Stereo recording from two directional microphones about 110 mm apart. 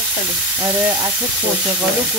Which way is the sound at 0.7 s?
20° right (ahead or behind).